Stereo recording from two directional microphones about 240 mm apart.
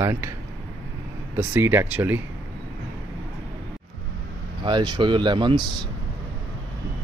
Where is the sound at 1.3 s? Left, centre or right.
Centre.